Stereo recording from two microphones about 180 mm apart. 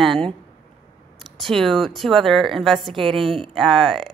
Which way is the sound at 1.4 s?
Centre (ahead or behind).